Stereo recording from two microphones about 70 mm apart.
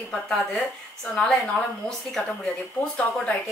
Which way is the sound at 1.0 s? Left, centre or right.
Centre.